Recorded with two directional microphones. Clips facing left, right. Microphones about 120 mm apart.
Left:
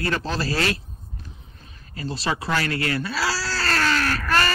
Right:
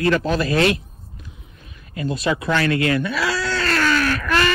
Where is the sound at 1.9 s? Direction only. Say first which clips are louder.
Right 5 dB; 30° left (ahead or behind).